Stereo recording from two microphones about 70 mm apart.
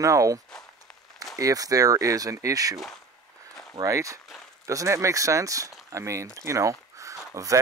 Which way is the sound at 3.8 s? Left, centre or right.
Right.